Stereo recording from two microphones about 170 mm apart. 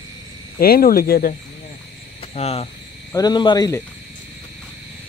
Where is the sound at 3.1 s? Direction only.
25° left (ahead or behind).